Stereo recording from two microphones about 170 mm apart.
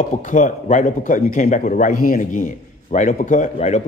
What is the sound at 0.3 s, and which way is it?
A man's voice, 50° left (ahead or behind).